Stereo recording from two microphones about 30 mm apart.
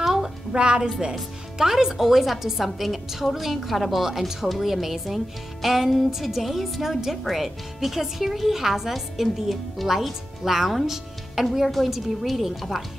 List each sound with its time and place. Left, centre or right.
0.5 s a woman's voice: right
1.6 s a woman's voice: centre
2.0 s a woman's voice: centre